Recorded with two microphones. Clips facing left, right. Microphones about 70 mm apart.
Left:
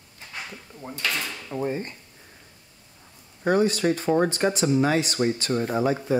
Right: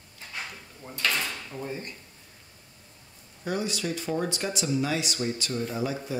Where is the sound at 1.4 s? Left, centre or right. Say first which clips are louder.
Left 7 dB; left.